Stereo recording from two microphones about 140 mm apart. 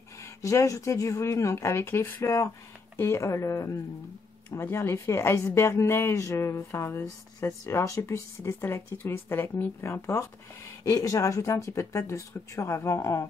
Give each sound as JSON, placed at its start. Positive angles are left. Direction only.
{"t": 0.4, "sound": "speech", "side_deg": 20}